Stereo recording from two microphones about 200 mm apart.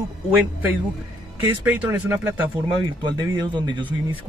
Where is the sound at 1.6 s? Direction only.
10° right (ahead or behind).